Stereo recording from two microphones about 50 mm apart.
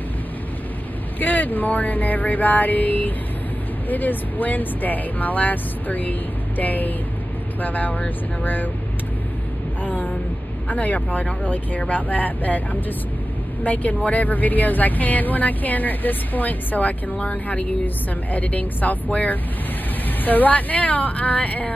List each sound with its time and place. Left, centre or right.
1.2 s speech: left
9.8 s a sound: left
10.7 s speech: left
13.7 s speech: left